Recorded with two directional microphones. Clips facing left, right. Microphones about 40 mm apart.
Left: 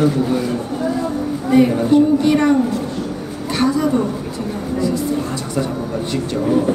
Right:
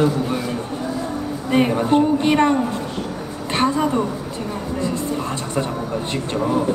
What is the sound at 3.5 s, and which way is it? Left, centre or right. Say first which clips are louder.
Speech: left 1 dB; right.